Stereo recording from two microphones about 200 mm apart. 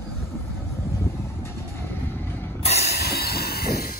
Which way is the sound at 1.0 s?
10° left (ahead or behind).